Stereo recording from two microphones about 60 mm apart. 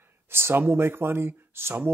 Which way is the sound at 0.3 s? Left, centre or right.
Right.